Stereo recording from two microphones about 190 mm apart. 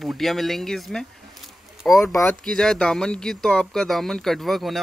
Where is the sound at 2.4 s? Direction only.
5° left (ahead or behind).